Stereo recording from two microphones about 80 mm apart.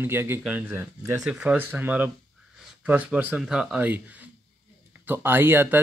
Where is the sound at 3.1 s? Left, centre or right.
Centre.